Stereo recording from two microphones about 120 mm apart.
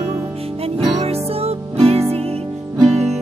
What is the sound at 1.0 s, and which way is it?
Music, 55° right (ahead or behind).